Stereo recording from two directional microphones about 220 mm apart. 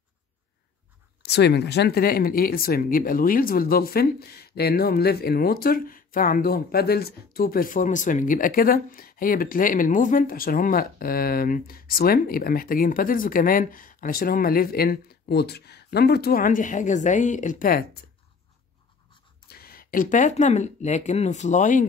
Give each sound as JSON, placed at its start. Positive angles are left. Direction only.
{"t": 1.2, "sound": "speech", "side_deg": 50}
{"t": 19.5, "sound": "speech", "side_deg": 45}